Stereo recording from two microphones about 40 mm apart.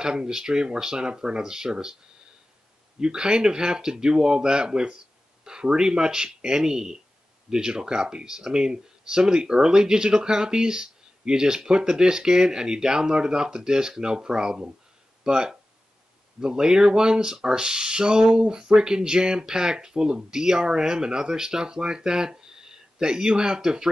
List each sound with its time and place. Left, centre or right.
0.0 s speech: centre
3.0 s speech: centre